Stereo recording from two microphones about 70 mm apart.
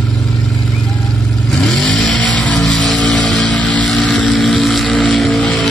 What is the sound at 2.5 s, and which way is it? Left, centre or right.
Music, centre.